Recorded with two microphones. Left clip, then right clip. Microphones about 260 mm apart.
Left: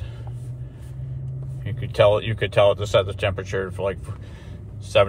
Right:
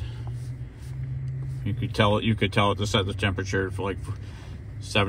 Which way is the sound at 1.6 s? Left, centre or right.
Centre.